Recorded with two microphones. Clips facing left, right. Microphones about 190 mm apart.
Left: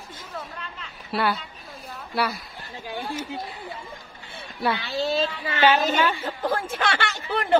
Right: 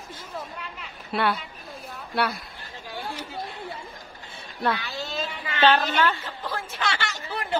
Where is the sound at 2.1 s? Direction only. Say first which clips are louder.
Even; centre (ahead or behind).